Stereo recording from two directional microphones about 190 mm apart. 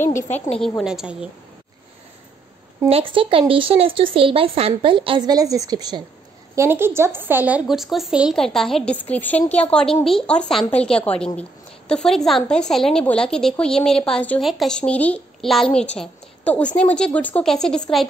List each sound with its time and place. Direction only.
0.6 s a woman's voice: centre (ahead or behind)
2.9 s a woman's voice: 30° right (ahead or behind); by 18.0 s 5° left (ahead or behind)